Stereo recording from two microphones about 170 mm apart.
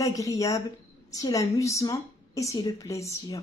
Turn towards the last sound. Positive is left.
turn(degrees=15)  # may be behind; listen again after turning